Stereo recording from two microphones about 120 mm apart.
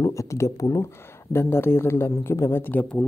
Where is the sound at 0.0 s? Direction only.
25° left (ahead or behind).